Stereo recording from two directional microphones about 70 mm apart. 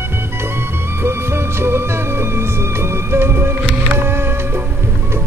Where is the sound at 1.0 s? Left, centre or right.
Right.